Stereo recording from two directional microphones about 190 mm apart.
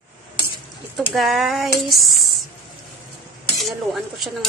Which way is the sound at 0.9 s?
Centre (ahead or behind).